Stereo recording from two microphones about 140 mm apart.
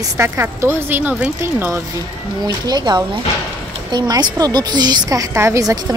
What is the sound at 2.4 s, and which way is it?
A woman's voice, 30° right (ahead or behind).